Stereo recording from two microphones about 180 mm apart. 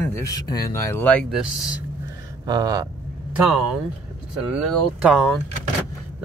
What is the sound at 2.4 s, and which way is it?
Speech, 20° right (ahead or behind).